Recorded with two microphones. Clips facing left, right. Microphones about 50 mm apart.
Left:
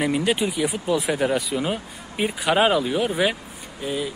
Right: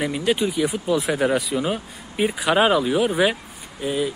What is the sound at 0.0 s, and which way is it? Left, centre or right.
Speech, centre.